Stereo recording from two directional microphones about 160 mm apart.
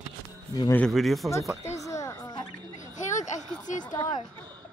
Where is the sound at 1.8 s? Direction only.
20° left (ahead or behind).